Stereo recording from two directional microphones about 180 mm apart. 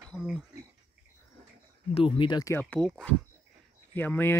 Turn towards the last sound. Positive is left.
turn(degrees=10)  # may be behind; listen again after turning